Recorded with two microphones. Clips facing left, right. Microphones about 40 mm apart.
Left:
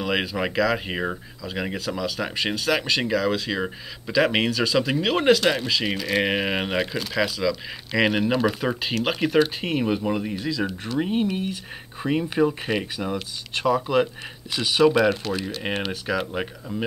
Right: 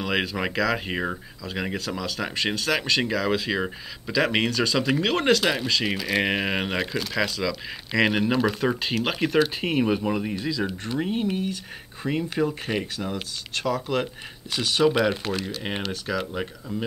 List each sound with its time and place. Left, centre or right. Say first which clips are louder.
0.0 s speech: left 1 dB; centre
11.0 s speech: left 2 dB; centre
12.4 s speech: left 3 dB; centre
14.9 s speech: left 3 dB; centre
15.3 s speech: left 2 dB; centre